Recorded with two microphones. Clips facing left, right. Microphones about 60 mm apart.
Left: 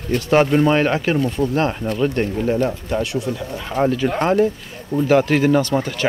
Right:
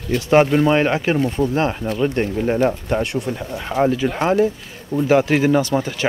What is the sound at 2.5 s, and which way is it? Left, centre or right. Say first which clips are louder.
Speech: right 2 dB; right.